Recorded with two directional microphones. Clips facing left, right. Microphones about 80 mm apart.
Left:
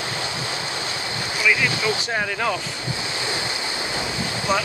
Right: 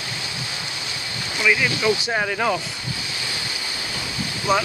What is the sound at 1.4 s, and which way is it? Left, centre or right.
Speech, centre.